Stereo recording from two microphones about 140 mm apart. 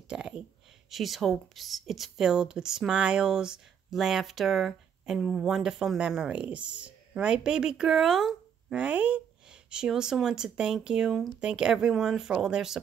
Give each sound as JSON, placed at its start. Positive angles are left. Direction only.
{"t": 0.1, "sound": "a woman's voice", "side_deg": -5}